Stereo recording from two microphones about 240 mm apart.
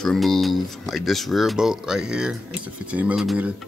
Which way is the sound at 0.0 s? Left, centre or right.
Centre.